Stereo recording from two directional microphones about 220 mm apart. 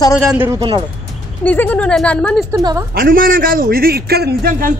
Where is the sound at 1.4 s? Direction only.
10° left (ahead or behind).